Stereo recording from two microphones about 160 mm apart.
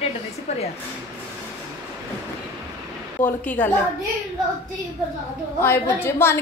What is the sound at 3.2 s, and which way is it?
Speech, 10° left (ahead or behind).